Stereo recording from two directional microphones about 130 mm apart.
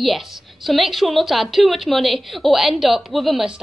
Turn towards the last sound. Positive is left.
turn(degrees=-5)  # may be behind; listen again after turning